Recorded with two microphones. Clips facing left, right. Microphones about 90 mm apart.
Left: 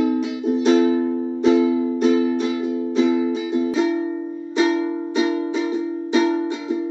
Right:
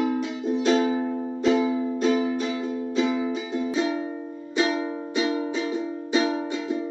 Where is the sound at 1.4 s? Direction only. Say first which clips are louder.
Left 5 dB; 20° left (ahead or behind).